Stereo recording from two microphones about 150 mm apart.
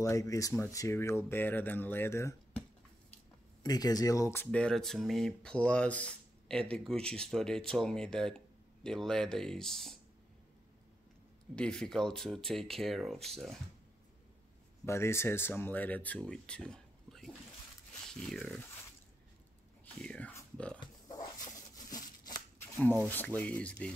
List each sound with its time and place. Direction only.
0.0 s speech: 20° left (ahead or behind)
3.6 s speech: 25° left (ahead or behind); by 9.9 s centre (ahead or behind)
11.5 s speech: 5° left (ahead or behind)
14.9 s speech: 20° left (ahead or behind); by 18.6 s centre (ahead or behind)
20.0 s speech: 5° left (ahead or behind)
21.7 s a sound: 25° left (ahead or behind)
23.0 s speech: 10° left (ahead or behind)